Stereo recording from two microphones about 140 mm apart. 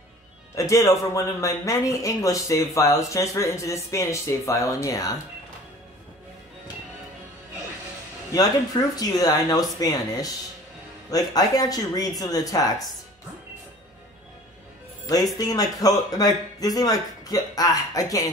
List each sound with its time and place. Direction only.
0.6 s speech: 20° left (ahead or behind)
8.9 s speech: 25° left (ahead or behind)
15.0 s speech: 25° left (ahead or behind)